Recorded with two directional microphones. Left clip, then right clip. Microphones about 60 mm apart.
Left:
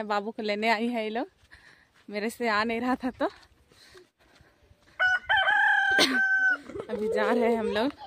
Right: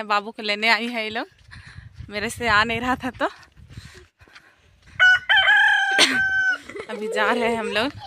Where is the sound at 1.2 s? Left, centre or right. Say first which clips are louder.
Right 2 dB; left.